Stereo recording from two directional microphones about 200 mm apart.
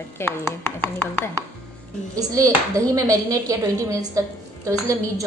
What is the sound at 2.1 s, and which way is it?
Speech, 15° right (ahead or behind).